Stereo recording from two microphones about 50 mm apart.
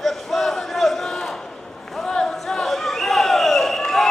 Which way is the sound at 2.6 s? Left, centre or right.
Centre.